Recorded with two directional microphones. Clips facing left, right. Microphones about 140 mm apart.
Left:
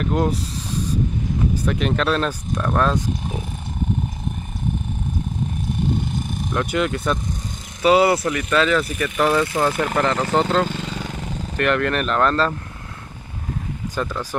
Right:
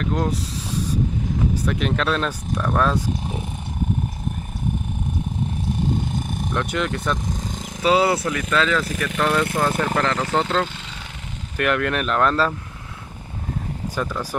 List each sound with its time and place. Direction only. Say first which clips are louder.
0.0 s speech: left 2 dB; 5° left (ahead or behind)
1.6 s speech: left 1 dB; centre (ahead or behind)
6.5 s speech: left 3 dB; 5° left (ahead or behind)
10.7 s vehicle: left 10 dB; 45° left (ahead or behind)
11.5 s speech: left 1 dB; 5° right (ahead or behind)
14.0 s speech: left 1 dB; 5° right (ahead or behind)